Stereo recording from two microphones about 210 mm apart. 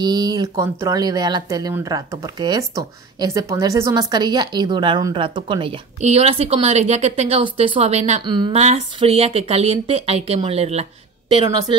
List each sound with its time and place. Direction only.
0.0 s speech: 20° right (ahead or behind)